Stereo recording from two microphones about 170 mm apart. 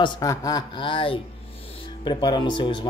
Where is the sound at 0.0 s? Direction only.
20° left (ahead or behind).